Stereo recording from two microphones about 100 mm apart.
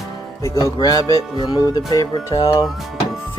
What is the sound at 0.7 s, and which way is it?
Music, 40° left (ahead or behind).